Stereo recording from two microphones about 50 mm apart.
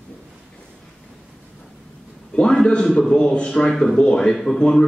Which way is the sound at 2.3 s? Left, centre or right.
Centre.